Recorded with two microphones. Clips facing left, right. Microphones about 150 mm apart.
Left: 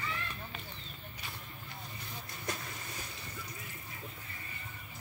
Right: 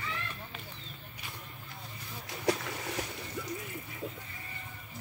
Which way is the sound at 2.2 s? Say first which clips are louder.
Right 11 dB; 90° right.